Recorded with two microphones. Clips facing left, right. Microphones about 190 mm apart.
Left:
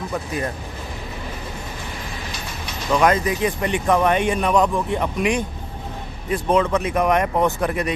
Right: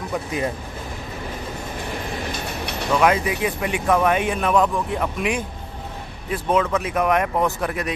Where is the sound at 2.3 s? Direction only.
65° right (ahead or behind).